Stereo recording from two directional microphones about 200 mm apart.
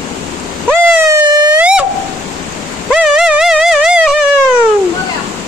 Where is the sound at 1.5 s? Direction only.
5° right (ahead or behind).